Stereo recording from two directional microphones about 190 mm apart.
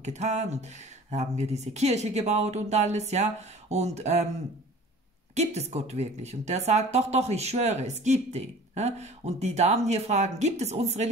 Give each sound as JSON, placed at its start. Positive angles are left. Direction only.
{"t": 0.0, "sound": "speech", "side_deg": -35}
{"t": 5.3, "sound": "speech", "side_deg": -35}